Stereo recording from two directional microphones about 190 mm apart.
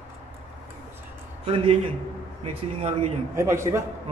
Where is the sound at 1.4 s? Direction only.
30° right (ahead or behind).